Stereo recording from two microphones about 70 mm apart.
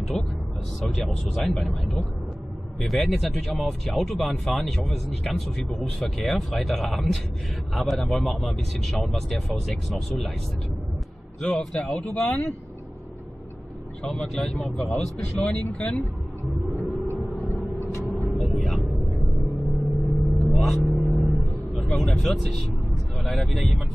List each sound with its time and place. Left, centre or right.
0.2 s speech: centre
11.7 s speech: centre
14.0 s speech: centre
16.4 s a sound: centre
18.2 s a sound: centre
19.5 s vehicle: centre
23.1 s speech: centre